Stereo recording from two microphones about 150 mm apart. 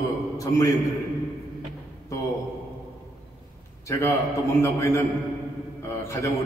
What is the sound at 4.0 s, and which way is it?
A man's voice, 20° left (ahead or behind).